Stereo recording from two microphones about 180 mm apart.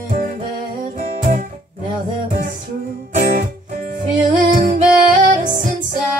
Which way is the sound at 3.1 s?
45° right (ahead or behind).